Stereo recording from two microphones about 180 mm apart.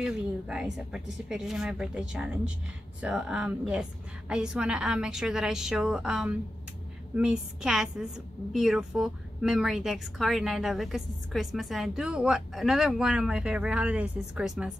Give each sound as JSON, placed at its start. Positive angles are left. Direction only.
{"t": 0.0, "sound": "a woman's voice", "side_deg": -5}